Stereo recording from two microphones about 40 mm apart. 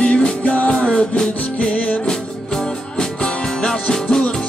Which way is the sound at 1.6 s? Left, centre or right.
Left.